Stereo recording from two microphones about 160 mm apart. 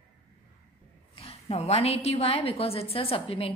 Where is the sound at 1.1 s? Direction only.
40° left (ahead or behind).